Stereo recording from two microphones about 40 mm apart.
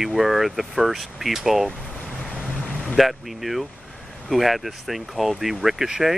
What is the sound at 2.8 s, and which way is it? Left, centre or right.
Speech, centre.